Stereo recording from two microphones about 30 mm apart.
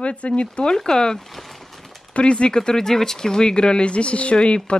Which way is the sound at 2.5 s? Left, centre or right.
Left.